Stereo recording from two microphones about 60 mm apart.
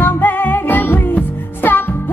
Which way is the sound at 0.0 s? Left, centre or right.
Left.